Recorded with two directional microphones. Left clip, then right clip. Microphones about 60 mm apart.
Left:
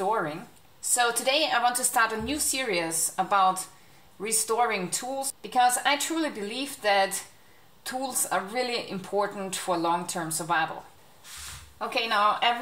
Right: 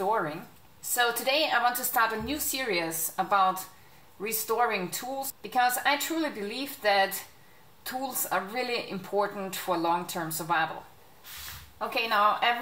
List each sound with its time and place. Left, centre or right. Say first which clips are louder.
0.0 s a sound: left 1 dB; centre
0.9 s speech: left 1 dB; left; by 2.7 s centre
2.7 s speech: left 2 dB; centre
11.8 s speech: left 1 dB; centre